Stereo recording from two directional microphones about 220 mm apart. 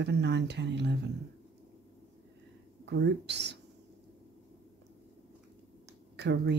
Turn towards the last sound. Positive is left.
turn(degrees=-50)  # may be behind; listen again after turning